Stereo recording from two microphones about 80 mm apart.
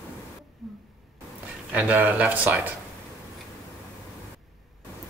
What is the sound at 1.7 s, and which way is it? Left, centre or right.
Speech, centre.